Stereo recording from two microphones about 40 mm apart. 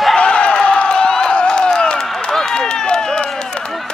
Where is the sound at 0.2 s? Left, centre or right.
Left.